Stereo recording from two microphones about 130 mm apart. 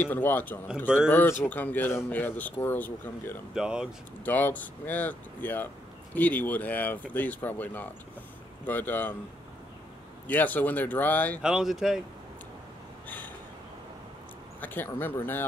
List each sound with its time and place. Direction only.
0.0 s speech: 15° left (ahead or behind)
3.5 s speech: 5° right (ahead or behind)
4.2 s speech: 15° left (ahead or behind)
10.2 s speech: 15° left (ahead or behind)
11.4 s speech: 5° right (ahead or behind)
14.6 s speech: 15° left (ahead or behind)